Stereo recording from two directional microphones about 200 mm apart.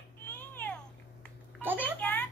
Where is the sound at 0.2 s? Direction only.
10° left (ahead or behind).